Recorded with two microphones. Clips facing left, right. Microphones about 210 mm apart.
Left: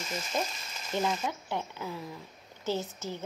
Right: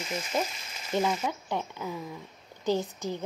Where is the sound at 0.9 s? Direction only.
10° right (ahead or behind).